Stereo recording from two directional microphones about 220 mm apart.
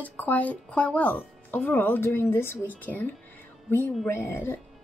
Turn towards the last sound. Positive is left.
turn(degrees=10)  # may be behind; listen again after turning